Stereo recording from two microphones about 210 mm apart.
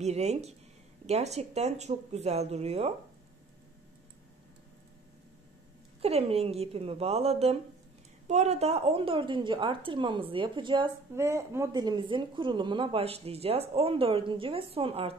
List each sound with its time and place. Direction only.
0.0 s speech: 30° right (ahead or behind)
6.0 s speech: 30° right (ahead or behind)
11.1 s speech: 15° right (ahead or behind)